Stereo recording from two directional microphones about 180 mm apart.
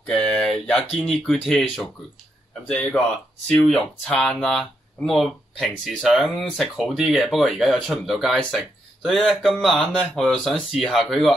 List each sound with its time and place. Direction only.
0.0 s speech: 5° left (ahead or behind)
3.4 s speech: centre (ahead or behind)